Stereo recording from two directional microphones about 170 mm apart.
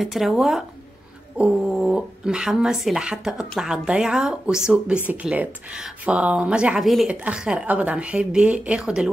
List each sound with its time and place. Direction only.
0.0 s speech: centre (ahead or behind)